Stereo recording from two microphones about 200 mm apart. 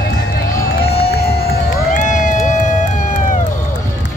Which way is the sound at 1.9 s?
40° left (ahead or behind).